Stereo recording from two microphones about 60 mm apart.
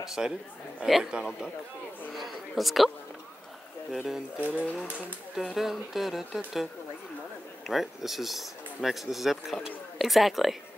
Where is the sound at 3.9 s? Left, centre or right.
Centre.